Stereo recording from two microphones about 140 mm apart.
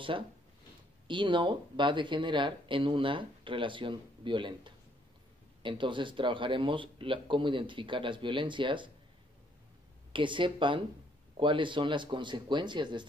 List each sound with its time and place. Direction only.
0.1 s speech: 35° right (ahead or behind)
10.1 s speech: 35° right (ahead or behind)